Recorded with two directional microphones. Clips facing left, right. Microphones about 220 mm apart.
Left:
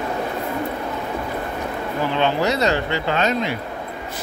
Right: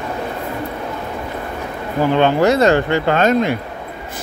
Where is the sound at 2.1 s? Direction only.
50° right (ahead or behind).